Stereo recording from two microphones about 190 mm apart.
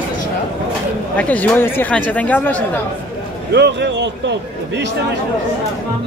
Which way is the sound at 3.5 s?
65° right (ahead or behind).